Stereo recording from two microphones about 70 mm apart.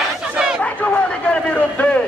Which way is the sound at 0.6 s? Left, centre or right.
Centre.